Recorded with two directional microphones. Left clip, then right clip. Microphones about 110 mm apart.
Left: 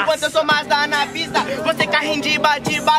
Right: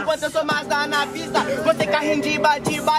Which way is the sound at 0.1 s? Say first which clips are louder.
Left 2 dB; 15° left (ahead or behind).